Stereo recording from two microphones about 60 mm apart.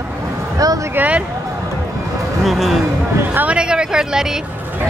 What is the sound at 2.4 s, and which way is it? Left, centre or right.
Speech, centre.